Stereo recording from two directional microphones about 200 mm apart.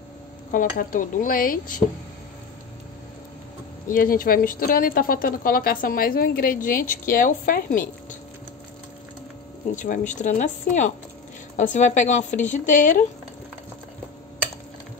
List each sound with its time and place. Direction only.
0.5 s a woman's voice: 40° left (ahead or behind)
3.8 s a woman's voice: 45° left (ahead or behind)
9.8 s speech: 40° left (ahead or behind)